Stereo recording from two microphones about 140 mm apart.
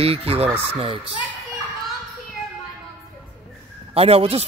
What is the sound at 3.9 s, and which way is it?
Speech, 45° right (ahead or behind).